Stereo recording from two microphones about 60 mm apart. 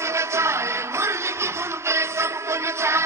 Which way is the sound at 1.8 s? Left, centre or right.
Right.